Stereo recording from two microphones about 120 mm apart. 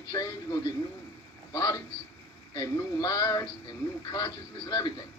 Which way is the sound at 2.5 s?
30° left (ahead or behind).